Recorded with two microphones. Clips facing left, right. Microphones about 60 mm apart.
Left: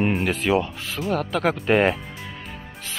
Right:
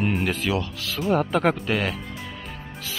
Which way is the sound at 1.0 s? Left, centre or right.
Centre.